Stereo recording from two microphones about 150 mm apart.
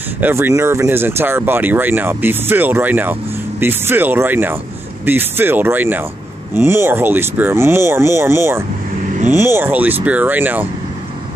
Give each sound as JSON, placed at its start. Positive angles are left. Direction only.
{"t": 0.2, "sound": "speech", "side_deg": -15}